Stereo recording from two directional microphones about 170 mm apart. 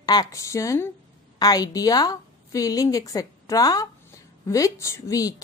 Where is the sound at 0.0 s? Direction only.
20° left (ahead or behind).